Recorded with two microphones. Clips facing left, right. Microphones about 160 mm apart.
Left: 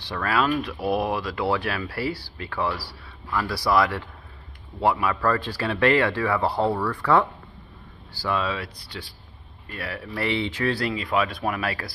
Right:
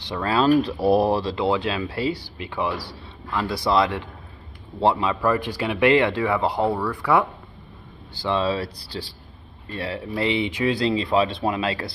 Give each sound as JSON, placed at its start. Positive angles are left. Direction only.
{"t": 0.0, "sound": "speech", "side_deg": -20}
{"t": 8.1, "sound": "speech", "side_deg": -25}